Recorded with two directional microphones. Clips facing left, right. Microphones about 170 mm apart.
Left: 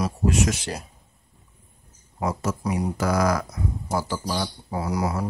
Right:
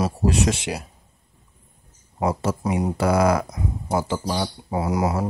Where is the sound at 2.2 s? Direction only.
30° right (ahead or behind).